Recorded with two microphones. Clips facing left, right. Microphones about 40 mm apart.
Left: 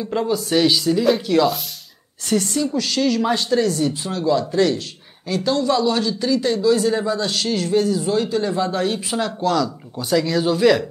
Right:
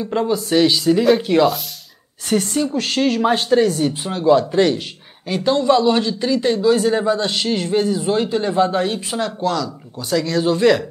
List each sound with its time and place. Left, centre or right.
0.0 s speech: centre
1.2 s speech: right
8.9 s speech: centre